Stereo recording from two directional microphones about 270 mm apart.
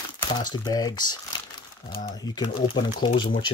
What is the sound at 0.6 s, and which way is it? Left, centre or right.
Speech, centre.